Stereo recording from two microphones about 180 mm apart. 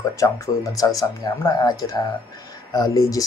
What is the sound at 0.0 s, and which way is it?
Speech, 15° left (ahead or behind).